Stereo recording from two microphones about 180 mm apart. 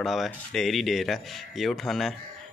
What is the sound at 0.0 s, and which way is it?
Speech, centre (ahead or behind).